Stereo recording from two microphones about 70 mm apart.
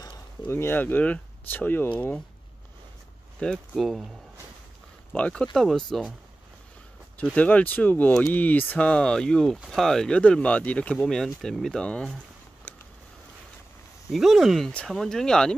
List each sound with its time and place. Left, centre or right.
0.5 s speech: left
3.3 s speech: centre
3.7 s speech: centre
5.1 s speech: centre
7.3 s speech: left
14.1 s speech: centre